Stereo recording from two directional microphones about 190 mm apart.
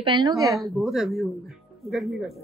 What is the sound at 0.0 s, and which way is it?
Speech, 25° right (ahead or behind).